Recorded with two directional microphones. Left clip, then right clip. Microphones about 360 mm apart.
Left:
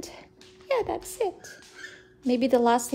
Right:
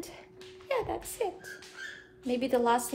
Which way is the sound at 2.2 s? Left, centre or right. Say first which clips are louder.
Left 6 dB; left.